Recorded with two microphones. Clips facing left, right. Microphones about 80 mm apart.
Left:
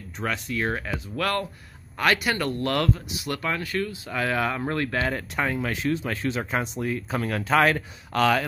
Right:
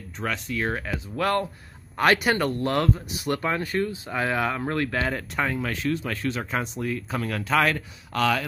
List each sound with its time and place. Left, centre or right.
0.2 s speech: centre
1.1 s speech: right
2.0 s speech: right
2.6 s speech: centre
3.3 s speech: right
4.1 s speech: centre
4.5 s speech: centre; by 7.8 s left
8.1 s speech: left